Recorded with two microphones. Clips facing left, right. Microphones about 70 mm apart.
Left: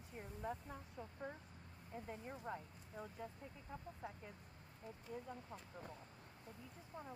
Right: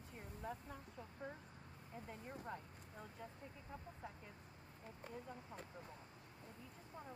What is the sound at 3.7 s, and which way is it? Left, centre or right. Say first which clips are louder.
Speech: left 3 dB; centre.